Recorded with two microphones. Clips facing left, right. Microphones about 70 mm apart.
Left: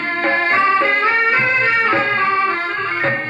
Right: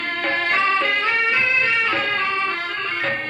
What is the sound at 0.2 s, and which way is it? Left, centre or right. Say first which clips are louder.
Music: left 5 dB; left.